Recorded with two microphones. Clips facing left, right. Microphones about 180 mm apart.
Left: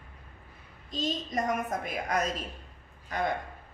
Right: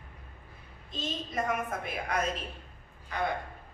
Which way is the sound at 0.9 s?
40° left (ahead or behind).